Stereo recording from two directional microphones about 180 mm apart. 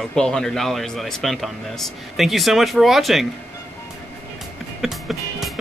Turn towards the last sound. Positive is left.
turn(degrees=0)  # may be behind; listen again after turning